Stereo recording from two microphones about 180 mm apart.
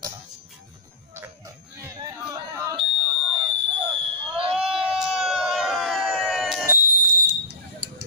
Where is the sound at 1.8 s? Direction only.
20° right (ahead or behind).